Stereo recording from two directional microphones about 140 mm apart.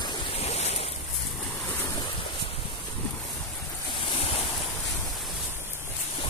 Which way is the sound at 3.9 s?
40° left (ahead or behind).